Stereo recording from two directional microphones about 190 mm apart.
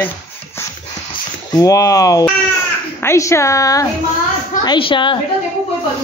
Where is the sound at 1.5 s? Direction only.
15° left (ahead or behind).